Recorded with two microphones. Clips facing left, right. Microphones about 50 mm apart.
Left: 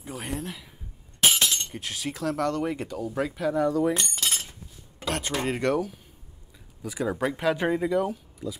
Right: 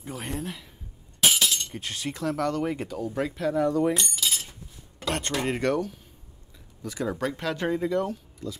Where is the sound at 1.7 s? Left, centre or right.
Centre.